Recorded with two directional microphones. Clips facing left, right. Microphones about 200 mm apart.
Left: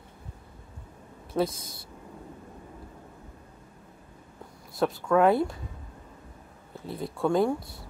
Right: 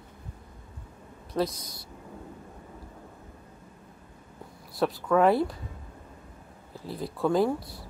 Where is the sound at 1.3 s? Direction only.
5° left (ahead or behind).